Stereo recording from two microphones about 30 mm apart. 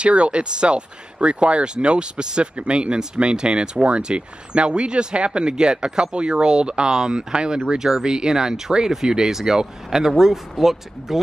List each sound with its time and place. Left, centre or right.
0.0 s speech: right; by 11.1 s centre